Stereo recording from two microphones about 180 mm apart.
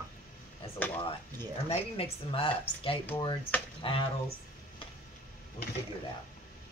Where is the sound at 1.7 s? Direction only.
30° left (ahead or behind).